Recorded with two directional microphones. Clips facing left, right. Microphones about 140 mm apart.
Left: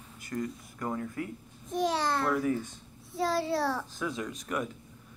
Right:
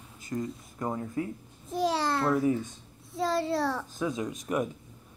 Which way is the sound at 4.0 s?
20° right (ahead or behind).